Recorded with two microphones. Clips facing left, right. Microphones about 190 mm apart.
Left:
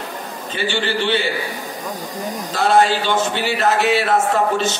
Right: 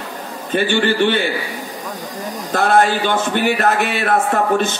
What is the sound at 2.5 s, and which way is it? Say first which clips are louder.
A man's voice: right 1 dB; 55° right (ahead or behind).